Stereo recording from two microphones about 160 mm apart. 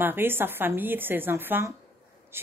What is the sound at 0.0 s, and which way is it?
Speech, 15° right (ahead or behind).